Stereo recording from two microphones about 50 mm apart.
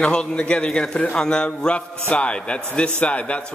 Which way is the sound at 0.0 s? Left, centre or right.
Centre.